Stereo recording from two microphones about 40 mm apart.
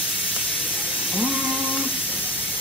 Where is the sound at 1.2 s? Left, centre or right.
Right.